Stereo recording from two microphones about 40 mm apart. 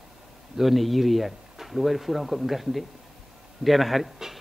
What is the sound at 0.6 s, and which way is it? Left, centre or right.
A man's voice, centre.